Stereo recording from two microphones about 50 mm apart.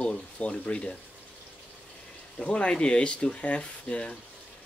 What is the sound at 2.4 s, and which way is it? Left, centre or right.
Speech, left.